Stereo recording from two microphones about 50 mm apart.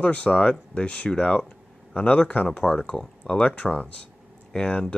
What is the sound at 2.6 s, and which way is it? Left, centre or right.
Speech, centre.